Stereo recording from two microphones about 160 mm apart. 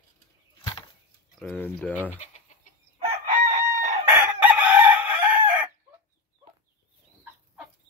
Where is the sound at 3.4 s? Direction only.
45° right (ahead or behind).